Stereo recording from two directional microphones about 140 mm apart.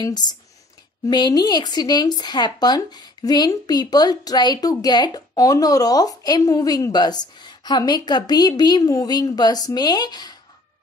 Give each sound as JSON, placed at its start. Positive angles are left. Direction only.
{"t": 0.0, "sound": "speech", "side_deg": 30}